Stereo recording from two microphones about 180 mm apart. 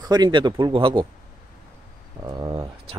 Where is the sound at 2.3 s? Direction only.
25° right (ahead or behind).